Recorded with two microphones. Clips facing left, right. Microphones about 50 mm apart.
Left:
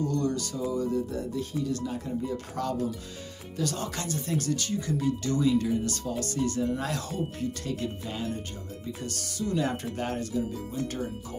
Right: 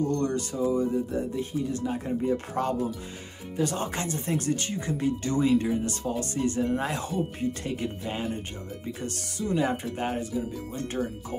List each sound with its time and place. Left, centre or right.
0.1 s speech: right